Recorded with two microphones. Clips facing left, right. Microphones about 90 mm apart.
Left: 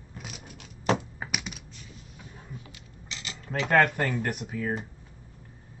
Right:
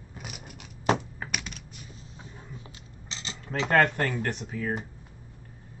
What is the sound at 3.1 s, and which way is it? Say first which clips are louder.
Cutlery: right 1 dB; 30° right (ahead or behind).